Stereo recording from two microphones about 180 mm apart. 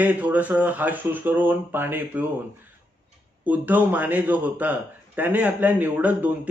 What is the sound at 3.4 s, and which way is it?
A man's voice, 10° right (ahead or behind).